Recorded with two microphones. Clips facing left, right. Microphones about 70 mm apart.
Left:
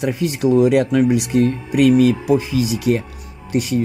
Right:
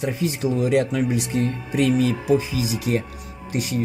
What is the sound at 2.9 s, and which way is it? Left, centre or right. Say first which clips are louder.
Speech: left 5 dB; left.